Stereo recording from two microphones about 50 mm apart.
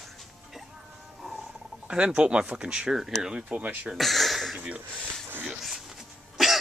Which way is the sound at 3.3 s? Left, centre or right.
Right.